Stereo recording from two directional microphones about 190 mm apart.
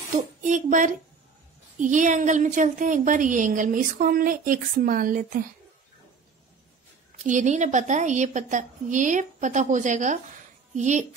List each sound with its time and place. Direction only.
0.4 s a woman's voice: 40° right (ahead or behind)
7.2 s a woman's voice: 40° right (ahead or behind)